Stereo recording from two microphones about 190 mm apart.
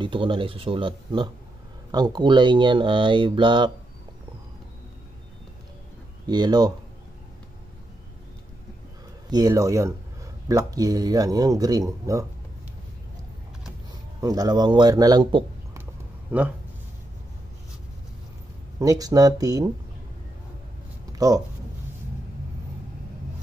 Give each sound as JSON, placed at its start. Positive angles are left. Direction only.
{"t": 0.0, "sound": "speech", "side_deg": -25}
{"t": 6.2, "sound": "speech", "side_deg": -20}
{"t": 9.3, "sound": "speech", "side_deg": -20}
{"t": 14.2, "sound": "a man's voice", "side_deg": -20}
{"t": 15.8, "sound": "a sound", "side_deg": -10}
{"t": 18.8, "sound": "speech", "side_deg": -20}
{"t": 21.1, "sound": "a sound", "side_deg": -20}